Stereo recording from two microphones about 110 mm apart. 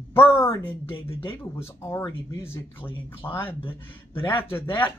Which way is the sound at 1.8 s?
25° left (ahead or behind).